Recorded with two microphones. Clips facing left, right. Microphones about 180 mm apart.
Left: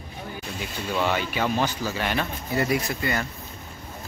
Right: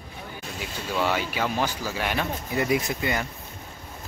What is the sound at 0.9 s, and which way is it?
Speech, 5° right (ahead or behind).